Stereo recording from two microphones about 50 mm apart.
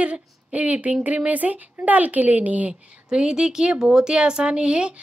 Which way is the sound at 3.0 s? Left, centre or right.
Centre.